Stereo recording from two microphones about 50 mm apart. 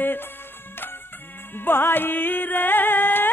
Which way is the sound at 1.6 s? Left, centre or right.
Left.